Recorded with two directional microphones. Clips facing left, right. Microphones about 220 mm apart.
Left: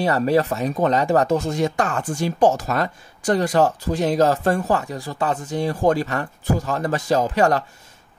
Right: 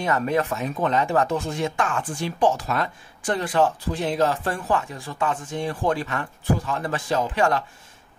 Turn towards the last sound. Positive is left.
turn(degrees=40)  # may be behind; listen again after turning